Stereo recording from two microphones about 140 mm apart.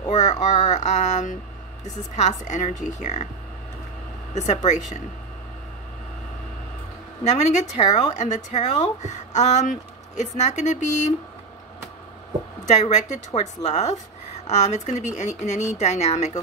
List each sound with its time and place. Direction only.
0.1 s speech: 60° left (ahead or behind)
4.3 s speech: 55° left (ahead or behind)
7.2 s speech: 55° left (ahead or behind)
12.6 s speech: 55° left (ahead or behind)